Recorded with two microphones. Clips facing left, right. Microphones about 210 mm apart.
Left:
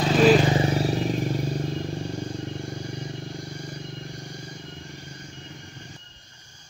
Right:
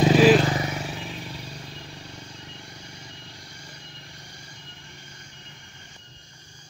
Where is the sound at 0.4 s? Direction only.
25° left (ahead or behind); by 4.2 s 50° left (ahead or behind).